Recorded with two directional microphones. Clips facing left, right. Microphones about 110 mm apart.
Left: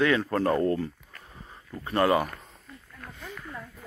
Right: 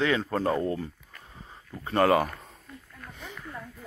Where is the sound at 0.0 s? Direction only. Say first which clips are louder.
Left 2 dB; 20° right (ahead or behind).